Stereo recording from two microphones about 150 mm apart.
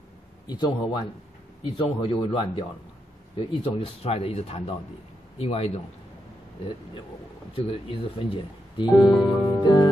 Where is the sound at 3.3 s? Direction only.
45° left (ahead or behind).